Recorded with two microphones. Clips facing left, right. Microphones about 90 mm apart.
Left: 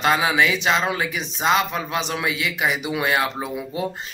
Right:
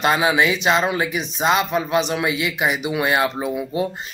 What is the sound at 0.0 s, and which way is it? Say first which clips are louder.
A man's voice: right 1 dB; 20° right (ahead or behind).